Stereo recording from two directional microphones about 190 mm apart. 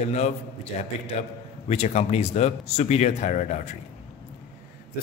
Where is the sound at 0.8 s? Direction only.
35° left (ahead or behind).